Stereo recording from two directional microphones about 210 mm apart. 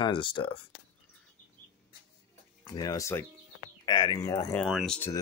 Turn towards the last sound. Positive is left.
turn(degrees=5)  # may be behind; listen again after turning